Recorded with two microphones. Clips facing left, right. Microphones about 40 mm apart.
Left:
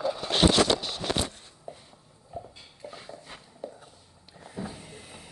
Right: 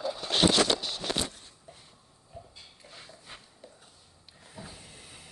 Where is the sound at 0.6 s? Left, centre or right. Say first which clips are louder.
Left 3 dB; left.